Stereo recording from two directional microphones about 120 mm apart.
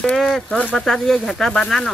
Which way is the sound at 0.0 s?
5° left (ahead or behind).